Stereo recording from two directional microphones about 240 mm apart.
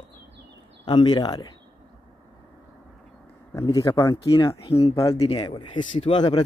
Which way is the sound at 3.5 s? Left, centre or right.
Centre.